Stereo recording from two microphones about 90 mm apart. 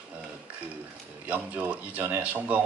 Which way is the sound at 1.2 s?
15° right (ahead or behind).